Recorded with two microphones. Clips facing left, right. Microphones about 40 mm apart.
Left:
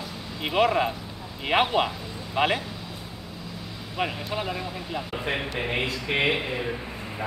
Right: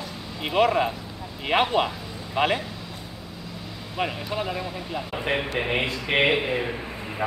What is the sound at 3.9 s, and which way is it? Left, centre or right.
Speech, centre.